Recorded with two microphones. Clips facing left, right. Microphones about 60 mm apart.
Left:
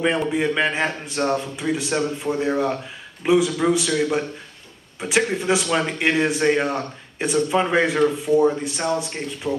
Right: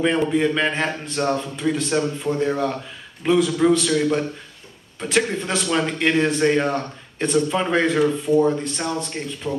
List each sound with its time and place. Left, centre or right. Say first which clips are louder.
0.0 s a man's voice: right 2 dB; centre